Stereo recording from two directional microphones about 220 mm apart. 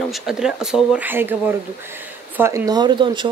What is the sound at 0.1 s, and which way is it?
Speech, centre (ahead or behind).